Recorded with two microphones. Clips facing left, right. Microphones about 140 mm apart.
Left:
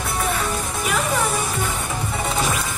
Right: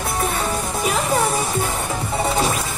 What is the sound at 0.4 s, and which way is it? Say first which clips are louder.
Music: right 2 dB; 35° right (ahead or behind).